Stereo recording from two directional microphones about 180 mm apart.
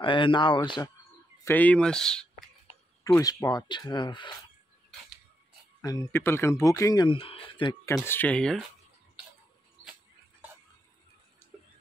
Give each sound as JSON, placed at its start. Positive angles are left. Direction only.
{"t": 0.0, "sound": "speech", "side_deg": 25}
{"t": 1.4, "sound": "speech", "side_deg": 10}
{"t": 3.0, "sound": "speech", "side_deg": 15}
{"t": 5.8, "sound": "speech", "side_deg": 20}
{"t": 7.8, "sound": "speech", "side_deg": 15}